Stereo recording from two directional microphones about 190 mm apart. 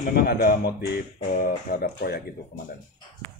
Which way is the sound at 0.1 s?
55° left (ahead or behind).